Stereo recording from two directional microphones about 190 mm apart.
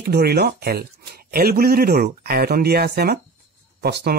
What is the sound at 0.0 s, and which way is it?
Speech, 55° right (ahead or behind).